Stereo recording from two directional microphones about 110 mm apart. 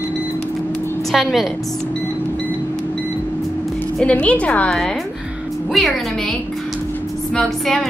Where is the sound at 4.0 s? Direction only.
10° left (ahead or behind).